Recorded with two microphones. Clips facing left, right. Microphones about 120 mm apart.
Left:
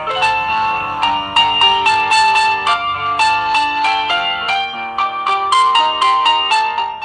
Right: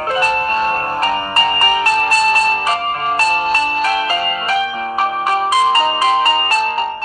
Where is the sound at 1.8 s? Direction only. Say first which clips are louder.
Left 4 dB; 90° left.